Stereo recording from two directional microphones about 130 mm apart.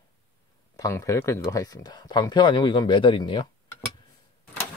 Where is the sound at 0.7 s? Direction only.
25° left (ahead or behind).